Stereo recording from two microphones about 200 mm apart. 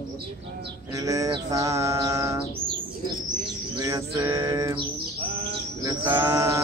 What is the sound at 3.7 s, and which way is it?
Bird, 15° right (ahead or behind).